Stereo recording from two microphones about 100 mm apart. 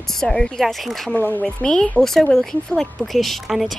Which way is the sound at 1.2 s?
15° left (ahead or behind).